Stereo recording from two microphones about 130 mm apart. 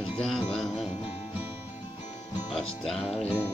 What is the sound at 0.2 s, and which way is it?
Music, 5° left (ahead or behind).